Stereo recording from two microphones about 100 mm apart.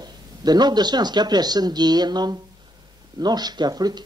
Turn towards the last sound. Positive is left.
turn(degrees=-40)  # may be behind; listen again after turning